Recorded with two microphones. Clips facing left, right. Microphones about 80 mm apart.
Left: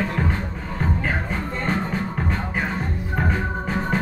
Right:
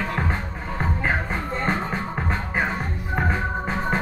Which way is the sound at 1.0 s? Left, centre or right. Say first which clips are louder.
Right 1 dB; right.